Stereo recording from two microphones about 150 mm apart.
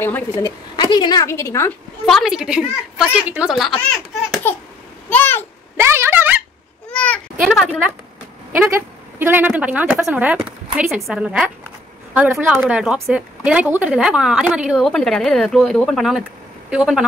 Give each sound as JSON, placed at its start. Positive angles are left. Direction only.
{"t": 0.4, "sound": "a woman's voice", "side_deg": 30}
{"t": 1.2, "sound": "a woman's voice", "side_deg": 20}
{"t": 2.0, "sound": "a woman's voice", "side_deg": 0}
{"t": 4.4, "sound": "a sound", "side_deg": 10}
{"t": 5.8, "sound": "a sound", "side_deg": -15}
{"t": 6.9, "sound": "babbling", "side_deg": 10}
{"t": 7.4, "sound": "a woman's voice", "side_deg": 0}
{"t": 8.5, "sound": "a woman's voice", "side_deg": -15}